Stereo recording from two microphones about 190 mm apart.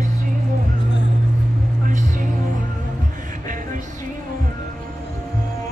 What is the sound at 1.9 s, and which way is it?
Music, 40° right (ahead or behind).